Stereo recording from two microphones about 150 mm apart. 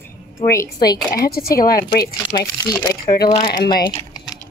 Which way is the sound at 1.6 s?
80° left.